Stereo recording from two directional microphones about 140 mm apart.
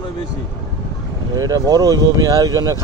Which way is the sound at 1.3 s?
25° right (ahead or behind).